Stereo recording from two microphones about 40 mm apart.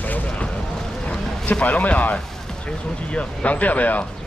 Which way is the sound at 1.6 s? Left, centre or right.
Left.